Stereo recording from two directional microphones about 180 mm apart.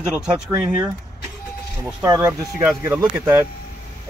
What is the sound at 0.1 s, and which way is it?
Speech, 10° right (ahead or behind).